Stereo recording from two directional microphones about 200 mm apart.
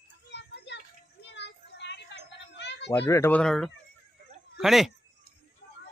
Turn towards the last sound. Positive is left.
turn(degrees=0)  # may be behind; listen again after turning